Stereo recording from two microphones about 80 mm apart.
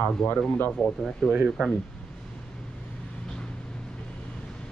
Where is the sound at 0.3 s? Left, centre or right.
Left.